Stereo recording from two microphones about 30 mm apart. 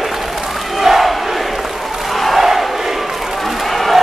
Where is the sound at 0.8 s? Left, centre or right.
Centre.